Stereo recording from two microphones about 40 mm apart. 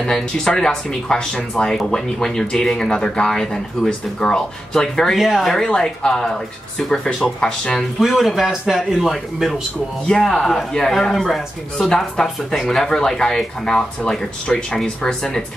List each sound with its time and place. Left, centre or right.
0.0 s speech: centre
5.1 s a man's voice: centre
5.7 s speech: centre
8.0 s a man's voice: centre
10.0 s speech: centre
11.2 s a man's voice: centre
12.2 s speech: centre